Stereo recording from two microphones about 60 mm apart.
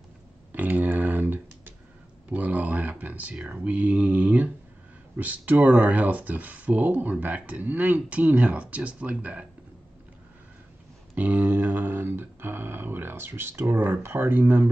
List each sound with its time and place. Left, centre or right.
0.5 s speech: right
11.1 s speech: right